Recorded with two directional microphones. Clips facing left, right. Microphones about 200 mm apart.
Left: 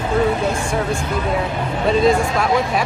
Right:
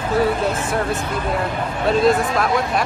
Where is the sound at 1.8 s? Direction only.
Centre (ahead or behind).